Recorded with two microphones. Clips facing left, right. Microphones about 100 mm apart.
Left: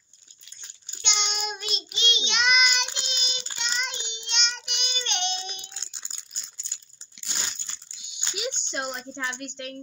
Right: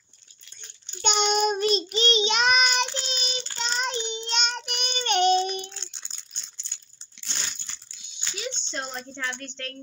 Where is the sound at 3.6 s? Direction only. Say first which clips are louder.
Right 4 dB; 35° right (ahead or behind).